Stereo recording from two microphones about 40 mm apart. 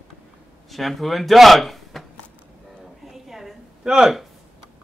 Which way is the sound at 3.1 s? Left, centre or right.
Centre.